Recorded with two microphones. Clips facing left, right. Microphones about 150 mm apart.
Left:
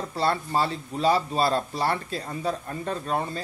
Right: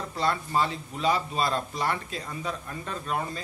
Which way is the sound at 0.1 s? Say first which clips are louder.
Left 2 dB; 30° left (ahead or behind).